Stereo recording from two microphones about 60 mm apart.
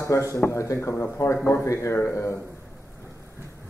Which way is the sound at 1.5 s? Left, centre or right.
Left.